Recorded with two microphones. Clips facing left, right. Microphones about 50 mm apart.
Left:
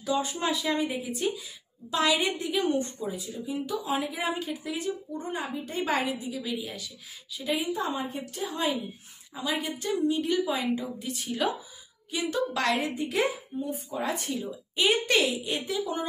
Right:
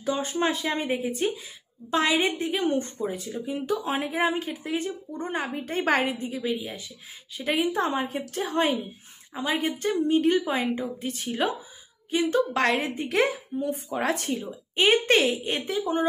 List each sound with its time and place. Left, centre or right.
0.0 s a woman's voice: right
7.6 s a woman's voice: right
13.9 s a woman's voice: right